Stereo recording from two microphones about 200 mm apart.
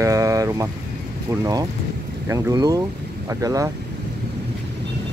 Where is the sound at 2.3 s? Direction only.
20° right (ahead or behind).